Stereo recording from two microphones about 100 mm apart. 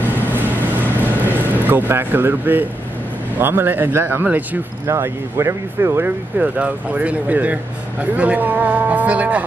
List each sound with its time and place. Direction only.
0.0 s vehicle: 20° right (ahead or behind)
1.9 s speech: 20° right (ahead or behind)